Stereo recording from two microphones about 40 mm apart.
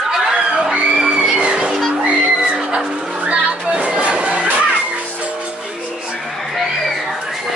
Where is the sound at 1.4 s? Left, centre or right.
Right.